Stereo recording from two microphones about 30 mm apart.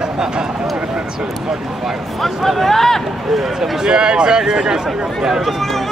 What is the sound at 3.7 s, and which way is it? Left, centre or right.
Speech, right.